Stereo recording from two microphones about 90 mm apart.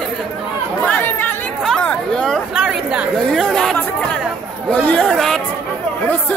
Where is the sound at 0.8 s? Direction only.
20° left (ahead or behind).